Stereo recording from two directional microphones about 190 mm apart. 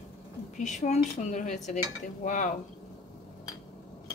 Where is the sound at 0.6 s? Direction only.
40° left (ahead or behind).